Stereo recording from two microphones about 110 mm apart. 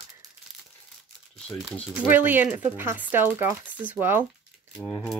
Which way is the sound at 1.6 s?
5° right (ahead or behind).